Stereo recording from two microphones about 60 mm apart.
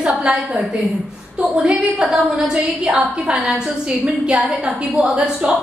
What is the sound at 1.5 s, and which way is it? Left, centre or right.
A woman's voice, centre.